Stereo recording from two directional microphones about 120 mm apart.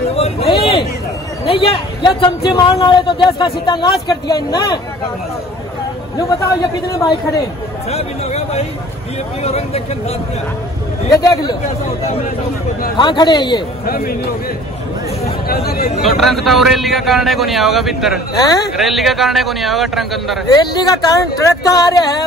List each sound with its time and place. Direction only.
0.1 s a sound: 55° left (ahead or behind)
2.0 s a man's voice: 45° left (ahead or behind)
6.1 s a man's voice: 25° left (ahead or behind)
7.9 s speech: 60° left (ahead or behind)
11.1 s a man's voice: 30° left (ahead or behind)
12.9 s a man's voice: 40° left (ahead or behind)
16.0 s a man's voice: centre (ahead or behind)
18.3 s a man's voice: 35° left (ahead or behind)
18.8 s a man's voice: centre (ahead or behind)
20.5 s a man's voice: 35° left (ahead or behind)